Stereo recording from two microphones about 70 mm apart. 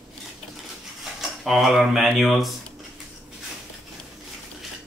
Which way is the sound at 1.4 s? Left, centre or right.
Centre.